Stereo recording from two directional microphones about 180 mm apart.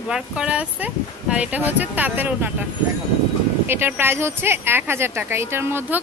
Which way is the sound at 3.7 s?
10° right (ahead or behind).